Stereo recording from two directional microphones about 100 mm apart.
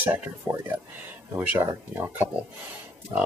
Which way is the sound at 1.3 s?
20° right (ahead or behind).